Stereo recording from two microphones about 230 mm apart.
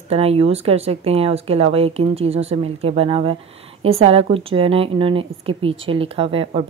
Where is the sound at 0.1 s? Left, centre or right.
Right.